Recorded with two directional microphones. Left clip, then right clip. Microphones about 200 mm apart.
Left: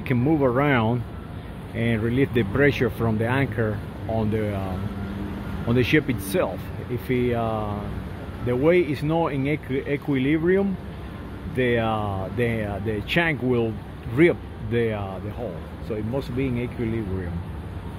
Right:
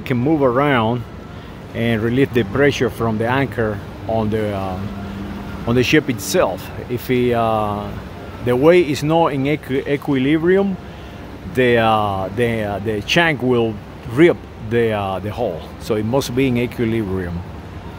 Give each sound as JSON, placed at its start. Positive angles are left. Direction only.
{"t": 0.1, "sound": "speech", "side_deg": -5}
{"t": 15.9, "sound": "speech", "side_deg": -30}